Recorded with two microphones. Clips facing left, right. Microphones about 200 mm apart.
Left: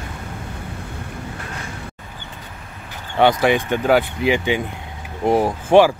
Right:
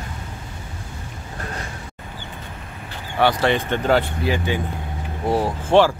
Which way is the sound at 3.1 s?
15° left (ahead or behind).